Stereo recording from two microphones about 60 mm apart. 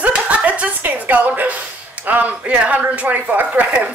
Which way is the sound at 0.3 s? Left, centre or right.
Right.